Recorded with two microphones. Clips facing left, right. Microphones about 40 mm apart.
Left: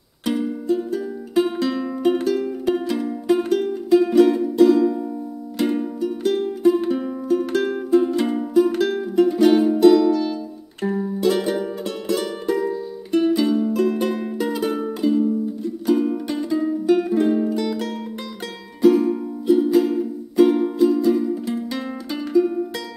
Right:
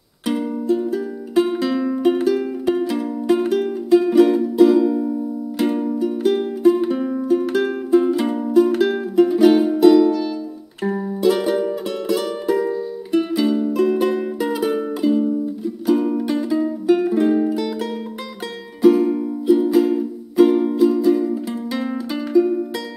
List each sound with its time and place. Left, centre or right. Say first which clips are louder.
0.2 s music: right 1 dB; centre